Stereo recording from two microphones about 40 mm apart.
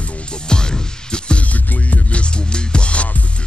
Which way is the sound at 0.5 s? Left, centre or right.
Centre.